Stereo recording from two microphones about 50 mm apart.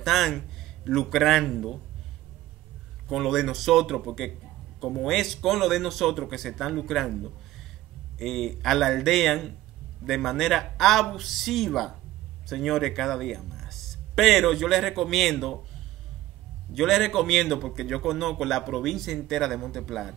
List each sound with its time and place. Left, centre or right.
0.0 s a man's voice: centre
3.1 s a man's voice: centre
16.7 s a man's voice: centre